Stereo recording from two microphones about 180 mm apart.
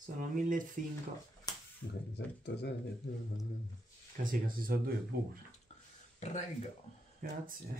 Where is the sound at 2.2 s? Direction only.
75° left (ahead or behind).